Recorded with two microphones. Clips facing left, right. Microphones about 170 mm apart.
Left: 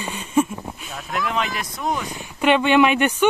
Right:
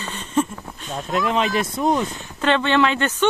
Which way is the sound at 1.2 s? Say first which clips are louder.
Right 5 dB; 25° right (ahead or behind).